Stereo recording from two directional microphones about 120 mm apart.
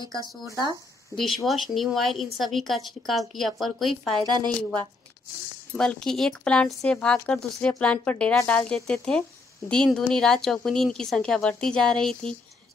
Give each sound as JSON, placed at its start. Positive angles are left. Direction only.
{"t": 0.0, "sound": "speech", "side_deg": -30}
{"t": 1.1, "sound": "a woman's voice", "side_deg": 0}
{"t": 4.2, "sound": "speech", "side_deg": -35}
{"t": 5.7, "sound": "a woman's voice", "side_deg": 5}